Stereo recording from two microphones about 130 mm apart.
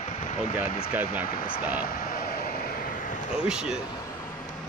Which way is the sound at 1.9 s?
90° left.